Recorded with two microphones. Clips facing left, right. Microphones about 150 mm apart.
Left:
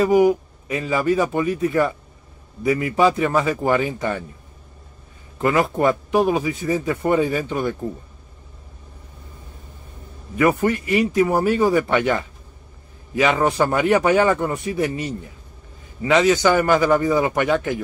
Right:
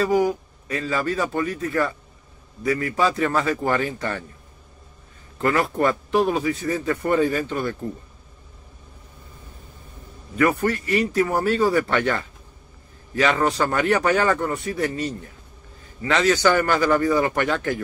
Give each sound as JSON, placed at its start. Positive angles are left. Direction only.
{"t": 0.0, "sound": "speech", "side_deg": 20}
{"t": 5.4, "sound": "speech", "side_deg": 15}
{"t": 10.3, "sound": "speech", "side_deg": 15}